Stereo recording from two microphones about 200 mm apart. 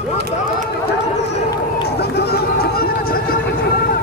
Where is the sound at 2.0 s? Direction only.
55° left (ahead or behind).